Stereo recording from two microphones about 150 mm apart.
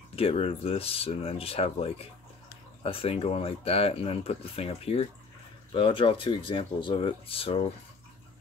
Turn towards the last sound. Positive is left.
turn(degrees=40)  # may be behind; listen again after turning